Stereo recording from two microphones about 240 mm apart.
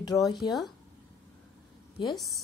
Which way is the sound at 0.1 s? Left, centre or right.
Centre.